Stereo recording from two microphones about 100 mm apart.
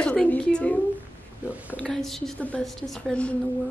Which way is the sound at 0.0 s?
10° left (ahead or behind).